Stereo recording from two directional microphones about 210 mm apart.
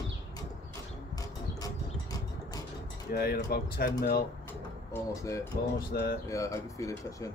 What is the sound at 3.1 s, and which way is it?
Speech, 45° left (ahead or behind).